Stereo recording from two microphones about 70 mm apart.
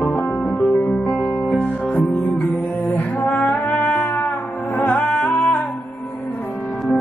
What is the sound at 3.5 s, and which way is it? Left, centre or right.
Music, centre.